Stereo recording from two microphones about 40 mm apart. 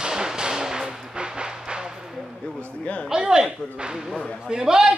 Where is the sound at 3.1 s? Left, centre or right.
Centre.